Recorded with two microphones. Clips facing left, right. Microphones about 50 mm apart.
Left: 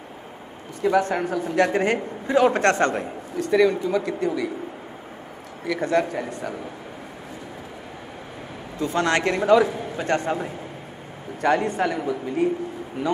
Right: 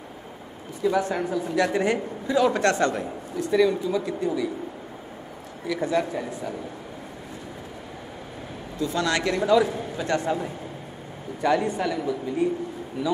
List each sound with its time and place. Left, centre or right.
0.8 s a man's voice: left
5.7 s speech: left
8.7 s a man's voice: left
11.4 s speech: left